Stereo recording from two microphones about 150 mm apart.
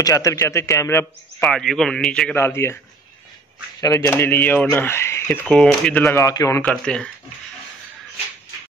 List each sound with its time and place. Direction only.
0.0 s a man's voice: 20° left (ahead or behind)
1.4 s a man's voice: 5° left (ahead or behind)
3.8 s speech: 20° left (ahead or behind)
5.5 s a man's voice: 5° left (ahead or behind)
6.1 s a man's voice: 20° left (ahead or behind)
6.6 s speech: 5° left (ahead or behind)